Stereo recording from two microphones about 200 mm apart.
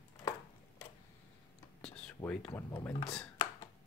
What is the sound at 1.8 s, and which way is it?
Whispering, 5° left (ahead or behind).